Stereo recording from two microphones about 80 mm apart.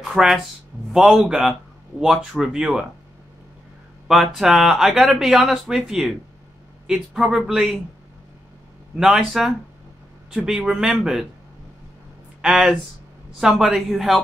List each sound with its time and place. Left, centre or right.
0.0 s speech: centre
4.1 s speech: centre
8.9 s speech: centre
12.4 s speech: centre